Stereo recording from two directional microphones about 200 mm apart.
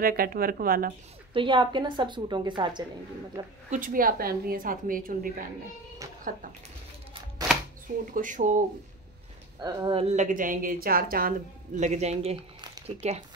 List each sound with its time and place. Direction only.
0.0 s a woman's voice: 45° right (ahead or behind)
1.3 s a woman's voice: 25° right (ahead or behind)
3.7 s a woman's voice: 45° right (ahead or behind)
8.0 s a woman's voice: 40° right (ahead or behind)
9.6 s a woman's voice: 20° right (ahead or behind)